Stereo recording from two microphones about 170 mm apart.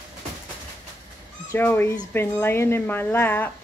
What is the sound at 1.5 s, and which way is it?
Speech, 10° left (ahead or behind).